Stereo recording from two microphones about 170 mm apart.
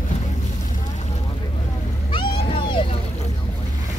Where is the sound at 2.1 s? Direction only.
30° left (ahead or behind).